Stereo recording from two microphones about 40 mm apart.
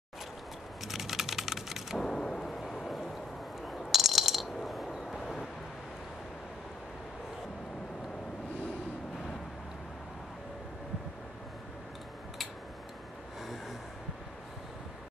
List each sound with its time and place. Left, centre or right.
0.8 s typing: centre
2.0 s a sound: centre
4.6 s vehicle: centre